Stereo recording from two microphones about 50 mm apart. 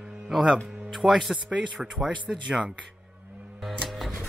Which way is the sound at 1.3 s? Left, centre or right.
Right.